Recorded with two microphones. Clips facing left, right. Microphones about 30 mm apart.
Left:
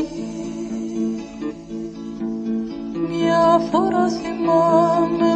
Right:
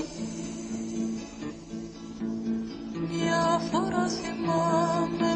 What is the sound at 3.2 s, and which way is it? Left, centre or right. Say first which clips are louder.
Music: left 10 dB; left.